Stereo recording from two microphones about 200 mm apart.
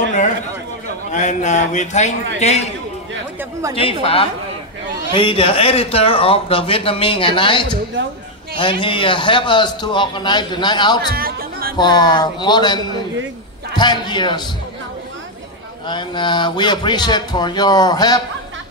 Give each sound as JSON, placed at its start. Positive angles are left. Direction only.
{"t": 1.1, "sound": "speech", "side_deg": 35}
{"t": 3.6, "sound": "a woman's voice", "side_deg": -15}
{"t": 4.0, "sound": "a man's voice", "side_deg": 30}
{"t": 11.1, "sound": "music", "side_deg": -45}
{"t": 11.7, "sound": "a man's voice", "side_deg": 20}
{"t": 15.9, "sound": "a man's voice", "side_deg": 25}